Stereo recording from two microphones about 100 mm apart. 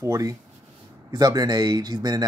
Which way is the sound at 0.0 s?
35° right (ahead or behind).